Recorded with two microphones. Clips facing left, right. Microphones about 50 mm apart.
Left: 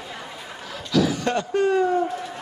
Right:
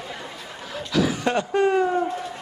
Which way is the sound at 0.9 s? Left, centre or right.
Right.